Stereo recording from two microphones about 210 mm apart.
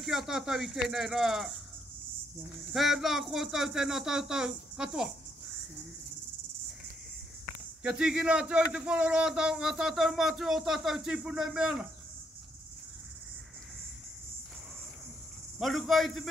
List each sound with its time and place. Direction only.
0.0 s speech: centre (ahead or behind)
2.7 s speech: centre (ahead or behind)
7.8 s speech: 5° right (ahead or behind)
15.6 s speech: centre (ahead or behind)